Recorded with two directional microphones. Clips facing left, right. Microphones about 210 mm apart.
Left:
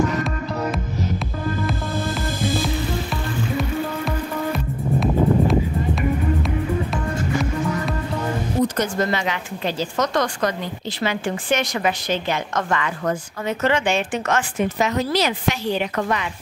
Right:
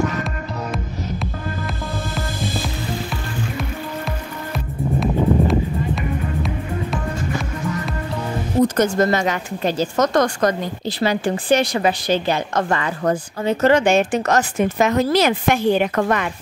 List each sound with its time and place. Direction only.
3.5 s music: centre (ahead or behind)
8.7 s speech: 45° right (ahead or behind)